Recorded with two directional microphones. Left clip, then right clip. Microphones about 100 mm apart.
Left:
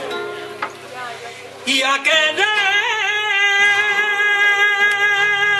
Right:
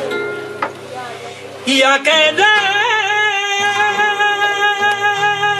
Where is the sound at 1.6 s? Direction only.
15° left (ahead or behind).